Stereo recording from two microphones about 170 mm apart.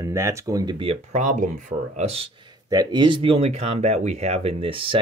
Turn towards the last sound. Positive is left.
turn(degrees=-30)  # may be behind; listen again after turning